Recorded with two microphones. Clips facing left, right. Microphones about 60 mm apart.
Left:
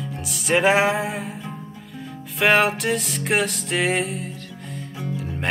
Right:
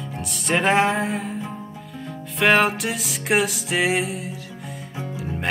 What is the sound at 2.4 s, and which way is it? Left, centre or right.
Music, centre.